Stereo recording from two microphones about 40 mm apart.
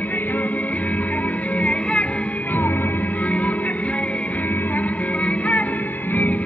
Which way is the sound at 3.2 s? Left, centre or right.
Left.